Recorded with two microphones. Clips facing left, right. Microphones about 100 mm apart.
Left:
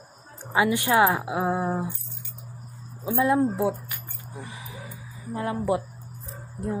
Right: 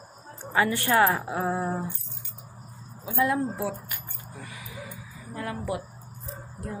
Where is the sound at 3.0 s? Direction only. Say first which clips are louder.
Left 4 dB; 25° left (ahead or behind).